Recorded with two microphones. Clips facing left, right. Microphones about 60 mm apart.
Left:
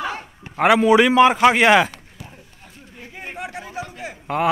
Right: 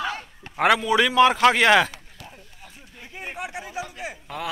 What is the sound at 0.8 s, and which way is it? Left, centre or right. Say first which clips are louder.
Speech: left 6 dB; centre.